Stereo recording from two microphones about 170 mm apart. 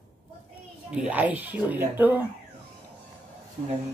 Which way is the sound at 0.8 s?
10° right (ahead or behind).